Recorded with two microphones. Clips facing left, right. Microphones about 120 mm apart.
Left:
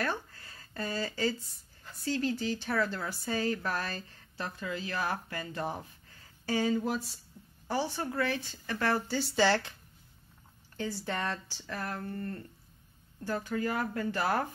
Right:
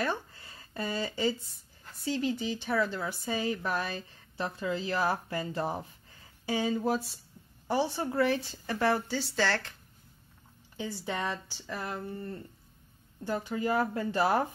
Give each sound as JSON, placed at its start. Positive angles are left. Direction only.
{"t": 0.0, "sound": "speech", "side_deg": -15}
{"t": 4.4, "sound": "a woman's voice", "side_deg": -25}
{"t": 6.4, "sound": "speech", "side_deg": -10}
{"t": 6.8, "sound": "a woman's voice", "side_deg": -30}
{"t": 8.8, "sound": "speech", "side_deg": -5}
{"t": 9.4, "sound": "speech", "side_deg": 10}
{"t": 10.8, "sound": "a woman's voice", "side_deg": -5}